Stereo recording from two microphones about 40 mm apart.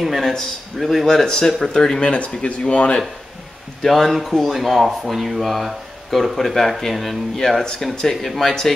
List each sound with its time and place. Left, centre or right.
0.0 s speech: centre
1.0 s speech: centre
2.0 s speech: left
3.8 s speech: centre
8.3 s speech: centre